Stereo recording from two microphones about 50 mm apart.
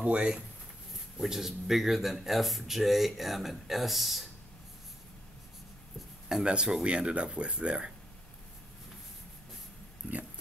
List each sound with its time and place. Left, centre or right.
0.0 s speech: right
1.1 s speech: centre
5.9 s a sound: centre
6.4 s speech: centre